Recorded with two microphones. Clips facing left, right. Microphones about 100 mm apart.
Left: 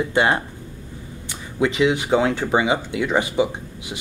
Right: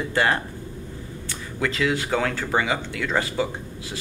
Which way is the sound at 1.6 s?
20° left (ahead or behind).